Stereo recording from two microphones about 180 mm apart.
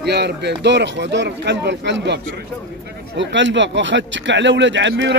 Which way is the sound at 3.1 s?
90° right.